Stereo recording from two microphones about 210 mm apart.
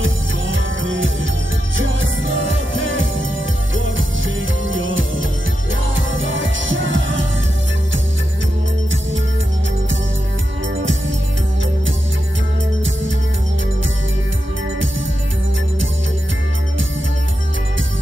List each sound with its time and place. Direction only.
0.0 s music: 65° right (ahead or behind)